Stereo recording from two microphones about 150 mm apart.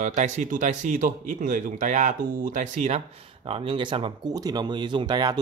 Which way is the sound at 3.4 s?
35° right (ahead or behind).